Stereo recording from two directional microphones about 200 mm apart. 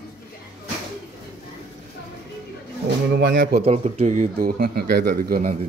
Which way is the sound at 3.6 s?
30° right (ahead or behind).